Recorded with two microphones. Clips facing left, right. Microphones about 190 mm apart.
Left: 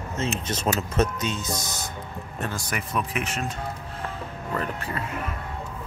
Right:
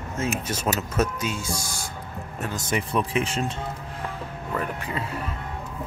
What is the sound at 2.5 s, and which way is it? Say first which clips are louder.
Speech: right 7 dB; 30° right (ahead or behind).